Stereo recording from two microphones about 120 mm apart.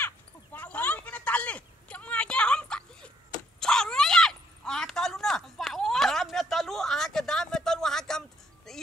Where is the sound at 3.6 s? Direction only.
5° left (ahead or behind).